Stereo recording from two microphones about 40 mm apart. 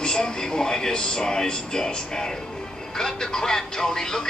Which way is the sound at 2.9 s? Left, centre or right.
Centre.